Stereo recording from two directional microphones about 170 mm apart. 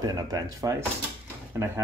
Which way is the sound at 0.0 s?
25° right (ahead or behind).